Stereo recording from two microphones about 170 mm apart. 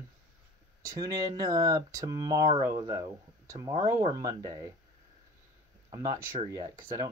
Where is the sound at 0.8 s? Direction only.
20° right (ahead or behind).